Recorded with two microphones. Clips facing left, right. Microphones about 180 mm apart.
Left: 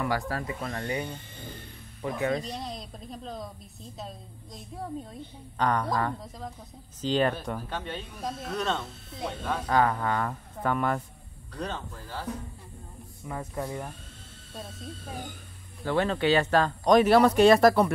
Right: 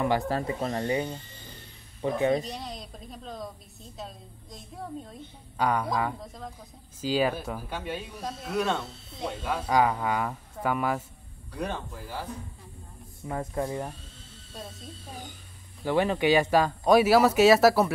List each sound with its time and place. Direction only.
0.0 s speech: 25° right (ahead or behind)
2.4 s speech: centre (ahead or behind)
13.4 s speech: 10° right (ahead or behind)
15.8 s speech: 15° right (ahead or behind)